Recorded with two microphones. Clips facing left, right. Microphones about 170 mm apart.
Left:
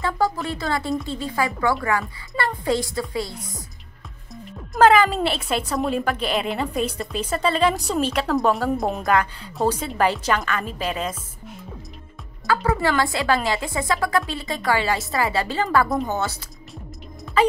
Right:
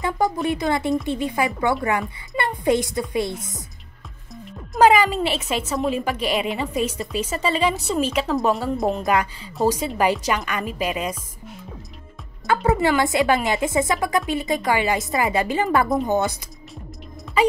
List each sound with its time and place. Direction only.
0.0 s a woman's voice: 20° right (ahead or behind)
3.3 s a woman's voice: centre (ahead or behind)
4.3 s music: centre (ahead or behind)
4.8 s a woman's voice: 5° right (ahead or behind)
12.6 s a woman's voice: 20° right (ahead or behind)